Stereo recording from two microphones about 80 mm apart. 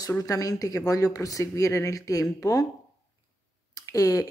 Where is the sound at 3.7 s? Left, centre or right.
Left.